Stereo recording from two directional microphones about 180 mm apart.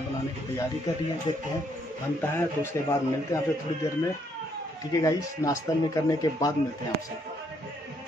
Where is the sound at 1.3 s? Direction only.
25° left (ahead or behind).